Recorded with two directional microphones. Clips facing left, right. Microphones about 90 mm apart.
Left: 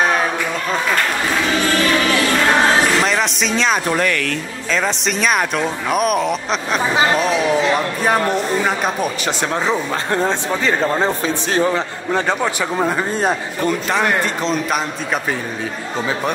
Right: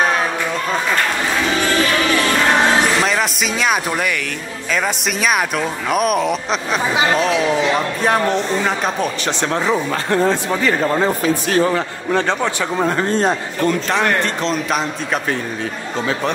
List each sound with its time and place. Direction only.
3.0 s speech: centre (ahead or behind)
9.4 s a man's voice: 15° left (ahead or behind)
11.2 s a man's voice: 25° left (ahead or behind)
12.1 s a man's voice: 5° left (ahead or behind)